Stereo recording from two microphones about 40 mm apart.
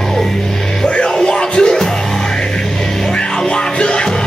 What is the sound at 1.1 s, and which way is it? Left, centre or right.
Music, centre.